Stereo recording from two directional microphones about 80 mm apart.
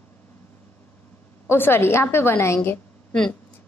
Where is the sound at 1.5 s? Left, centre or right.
Left.